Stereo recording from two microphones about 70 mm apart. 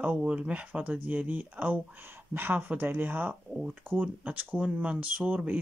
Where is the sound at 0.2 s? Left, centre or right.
Centre.